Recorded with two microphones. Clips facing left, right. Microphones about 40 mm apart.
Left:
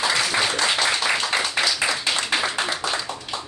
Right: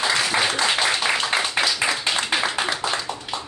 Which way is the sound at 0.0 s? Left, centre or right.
Centre.